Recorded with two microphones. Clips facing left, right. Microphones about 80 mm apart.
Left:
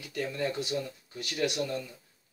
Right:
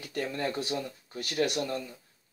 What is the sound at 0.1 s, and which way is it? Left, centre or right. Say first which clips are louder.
Speech: even; right.